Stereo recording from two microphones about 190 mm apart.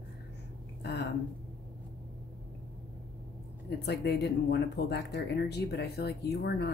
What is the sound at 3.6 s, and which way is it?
Speech, 60° left (ahead or behind).